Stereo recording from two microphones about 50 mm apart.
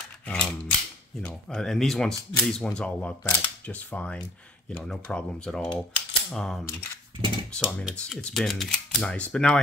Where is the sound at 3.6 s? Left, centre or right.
Left.